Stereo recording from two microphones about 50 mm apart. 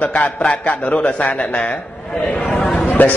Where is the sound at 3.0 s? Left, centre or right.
Left.